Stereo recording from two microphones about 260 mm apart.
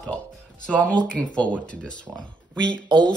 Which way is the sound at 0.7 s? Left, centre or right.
Centre.